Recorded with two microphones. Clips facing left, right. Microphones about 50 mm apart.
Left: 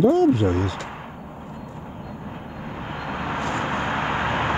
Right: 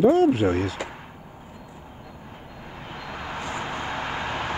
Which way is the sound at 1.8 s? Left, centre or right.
Left.